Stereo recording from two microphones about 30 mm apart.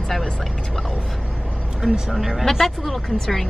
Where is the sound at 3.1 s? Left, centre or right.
Centre.